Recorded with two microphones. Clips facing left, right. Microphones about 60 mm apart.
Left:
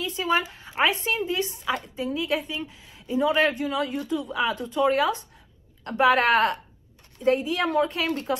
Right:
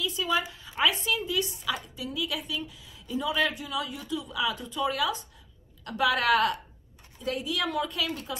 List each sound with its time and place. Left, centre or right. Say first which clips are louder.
0.0 s a sound: left 3 dB; left
1.0 s a woman's voice: left 3 dB; left
8.1 s speech: left 8 dB; left